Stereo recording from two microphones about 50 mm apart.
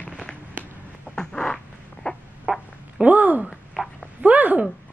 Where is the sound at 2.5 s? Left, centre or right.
Centre.